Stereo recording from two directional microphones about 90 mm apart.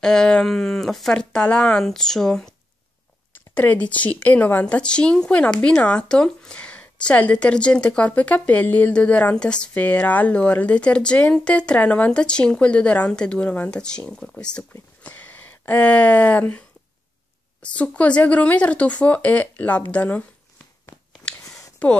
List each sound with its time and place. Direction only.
0.0 s speech: 5° left (ahead or behind)
3.3 s speech: 20° left (ahead or behind)
21.3 s a sound: 15° left (ahead or behind)